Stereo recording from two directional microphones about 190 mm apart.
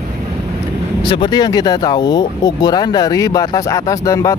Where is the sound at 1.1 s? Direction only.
25° left (ahead or behind).